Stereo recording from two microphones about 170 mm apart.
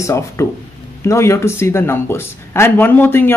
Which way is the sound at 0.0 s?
15° left (ahead or behind).